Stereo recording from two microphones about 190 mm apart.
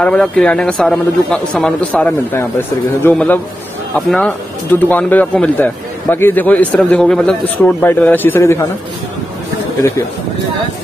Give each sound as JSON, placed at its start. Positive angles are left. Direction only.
{"t": 0.0, "sound": "speech", "side_deg": 5}